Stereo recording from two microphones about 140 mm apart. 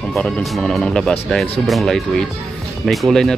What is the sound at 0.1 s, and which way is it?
Speech, centre (ahead or behind).